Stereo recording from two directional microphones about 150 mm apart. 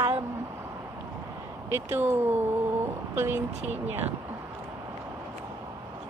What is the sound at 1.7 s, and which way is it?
Speech, 15° right (ahead or behind).